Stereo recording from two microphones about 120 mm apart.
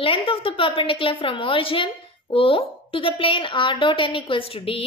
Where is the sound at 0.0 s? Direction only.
50° left (ahead or behind).